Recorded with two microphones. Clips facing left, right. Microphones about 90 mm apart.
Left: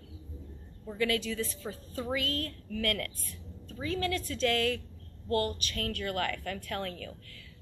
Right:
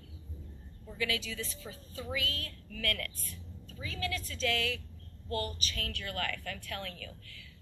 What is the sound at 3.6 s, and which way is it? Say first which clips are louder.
A woman's voice: left 7 dB; 50° left (ahead or behind).